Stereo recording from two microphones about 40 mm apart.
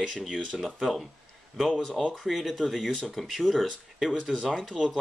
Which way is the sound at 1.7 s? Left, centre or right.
Centre.